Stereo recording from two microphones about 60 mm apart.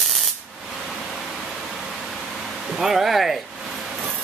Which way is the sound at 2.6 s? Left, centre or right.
Centre.